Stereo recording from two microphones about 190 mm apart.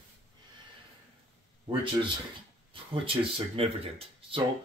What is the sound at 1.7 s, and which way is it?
Speech, 25° right (ahead or behind).